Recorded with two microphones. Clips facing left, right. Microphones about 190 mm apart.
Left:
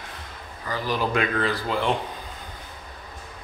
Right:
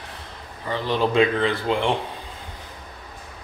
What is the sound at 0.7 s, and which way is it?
Speech, 25° right (ahead or behind).